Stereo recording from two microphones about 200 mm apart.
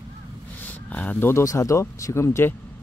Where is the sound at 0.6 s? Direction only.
10° left (ahead or behind).